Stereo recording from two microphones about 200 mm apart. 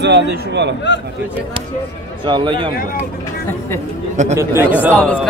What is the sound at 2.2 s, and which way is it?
Speech, 25° right (ahead or behind).